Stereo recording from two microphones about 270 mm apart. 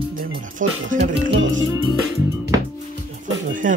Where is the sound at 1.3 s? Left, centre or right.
Right.